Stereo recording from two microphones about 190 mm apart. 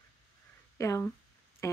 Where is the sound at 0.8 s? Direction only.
15° left (ahead or behind).